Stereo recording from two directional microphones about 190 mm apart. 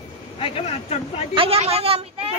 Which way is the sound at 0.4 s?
30° left (ahead or behind).